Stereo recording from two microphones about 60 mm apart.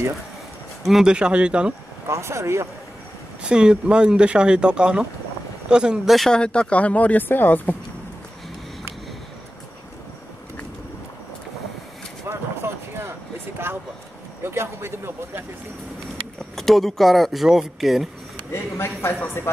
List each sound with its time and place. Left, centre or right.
0.8 s speech: centre
1.1 s speech: centre
2.0 s a man's voice: right
3.4 s speech: centre
6.0 s speech: centre
6.3 s speech: centre; by 7.7 s left
12.3 s a sound: right
14.4 s a man's voice: right
16.5 s speech: centre
18.5 s a man's voice: left